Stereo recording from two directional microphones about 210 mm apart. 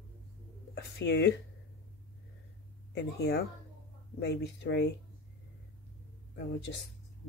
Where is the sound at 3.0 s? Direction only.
50° left (ahead or behind).